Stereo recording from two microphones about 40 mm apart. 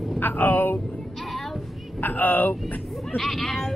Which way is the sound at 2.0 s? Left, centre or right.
Left.